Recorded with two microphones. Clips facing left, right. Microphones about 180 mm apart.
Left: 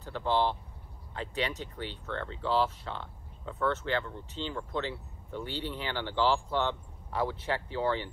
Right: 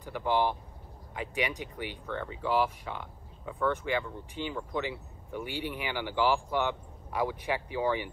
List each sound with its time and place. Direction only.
0.0 s speech: 10° right (ahead or behind)